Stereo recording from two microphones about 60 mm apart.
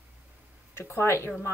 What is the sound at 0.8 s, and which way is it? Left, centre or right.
Speech, left.